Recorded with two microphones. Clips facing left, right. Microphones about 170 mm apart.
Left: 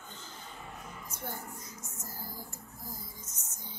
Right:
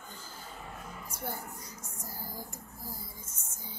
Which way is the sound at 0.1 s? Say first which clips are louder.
Even; 10° right (ahead or behind).